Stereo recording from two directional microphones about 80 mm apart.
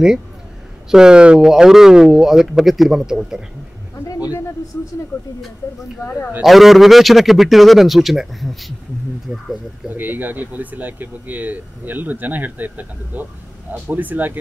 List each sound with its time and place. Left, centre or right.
0.8 s speech: centre
6.4 s a man's voice: centre
9.3 s speech: centre